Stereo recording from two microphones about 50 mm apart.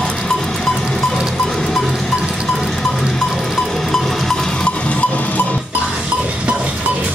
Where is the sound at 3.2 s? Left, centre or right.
Centre; by 5.6 s left.